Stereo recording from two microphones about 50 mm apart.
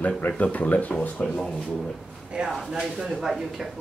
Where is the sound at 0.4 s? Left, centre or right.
Left.